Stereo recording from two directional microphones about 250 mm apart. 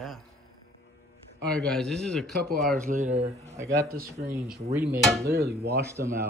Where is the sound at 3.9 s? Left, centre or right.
Right.